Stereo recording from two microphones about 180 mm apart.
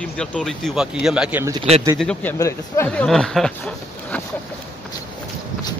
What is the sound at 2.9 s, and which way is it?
Speech, 5° left (ahead or behind).